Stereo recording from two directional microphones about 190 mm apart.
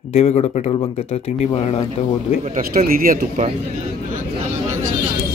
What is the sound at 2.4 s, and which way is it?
Speech, 45° right (ahead or behind).